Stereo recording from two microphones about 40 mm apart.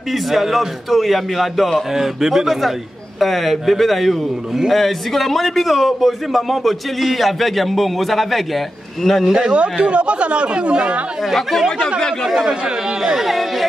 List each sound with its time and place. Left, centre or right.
0.1 s a man's voice: centre
9.5 s speech: right
12.4 s speech: centre
13.2 s a man's voice: centre